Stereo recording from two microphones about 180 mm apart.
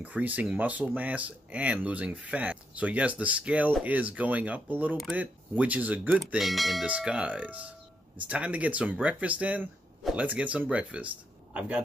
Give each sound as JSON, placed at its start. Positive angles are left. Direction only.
{"t": 0.0, "sound": "speech", "side_deg": -10}